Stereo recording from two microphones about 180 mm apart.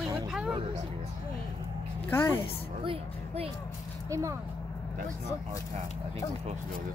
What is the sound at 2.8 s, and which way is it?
Speech, 30° right (ahead or behind).